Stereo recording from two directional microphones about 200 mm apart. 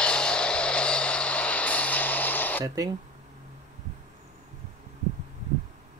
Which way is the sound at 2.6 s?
15° right (ahead or behind).